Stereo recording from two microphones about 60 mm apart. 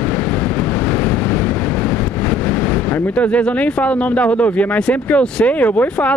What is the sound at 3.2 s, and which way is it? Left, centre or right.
Speech, left.